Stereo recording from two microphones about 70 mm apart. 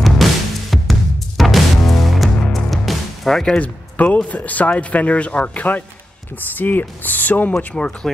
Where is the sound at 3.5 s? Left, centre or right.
Left.